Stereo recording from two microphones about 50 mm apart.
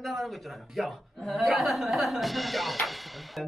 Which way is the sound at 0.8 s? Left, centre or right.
Centre.